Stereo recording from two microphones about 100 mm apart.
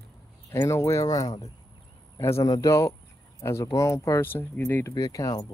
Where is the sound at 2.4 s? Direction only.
40° left (ahead or behind); by 4.8 s 20° left (ahead or behind).